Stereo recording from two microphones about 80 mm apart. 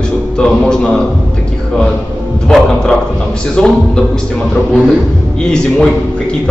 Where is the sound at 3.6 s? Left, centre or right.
Centre.